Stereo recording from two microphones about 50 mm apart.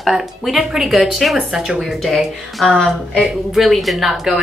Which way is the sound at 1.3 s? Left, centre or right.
Centre.